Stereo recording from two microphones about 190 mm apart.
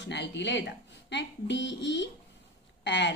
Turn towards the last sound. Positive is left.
turn(degrees=65)  # may be behind; listen again after turning